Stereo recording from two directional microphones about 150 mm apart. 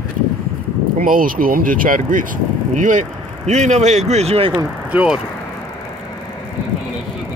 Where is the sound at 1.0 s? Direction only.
70° right (ahead or behind); by 4.5 s 40° right (ahead or behind).